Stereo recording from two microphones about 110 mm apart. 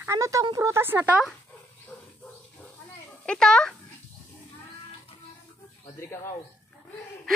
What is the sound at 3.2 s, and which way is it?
Speech, 5° left (ahead or behind).